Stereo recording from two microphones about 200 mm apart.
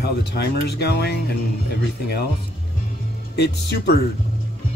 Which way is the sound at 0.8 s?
55° left (ahead or behind).